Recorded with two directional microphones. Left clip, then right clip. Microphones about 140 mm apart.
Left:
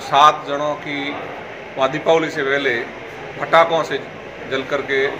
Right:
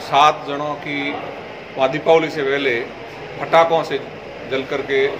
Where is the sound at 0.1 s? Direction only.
5° right (ahead or behind).